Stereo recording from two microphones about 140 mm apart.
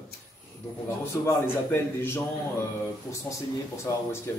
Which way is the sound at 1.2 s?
20° left (ahead or behind).